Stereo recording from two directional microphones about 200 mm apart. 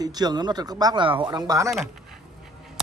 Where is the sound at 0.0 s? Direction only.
20° right (ahead or behind).